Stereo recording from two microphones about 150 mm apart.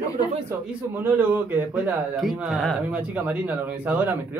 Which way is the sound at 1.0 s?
10° right (ahead or behind).